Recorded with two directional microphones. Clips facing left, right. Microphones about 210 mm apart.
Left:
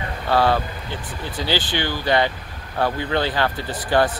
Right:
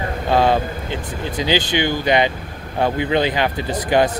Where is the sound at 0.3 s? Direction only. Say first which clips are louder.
Right 2 dB; 20° right (ahead or behind).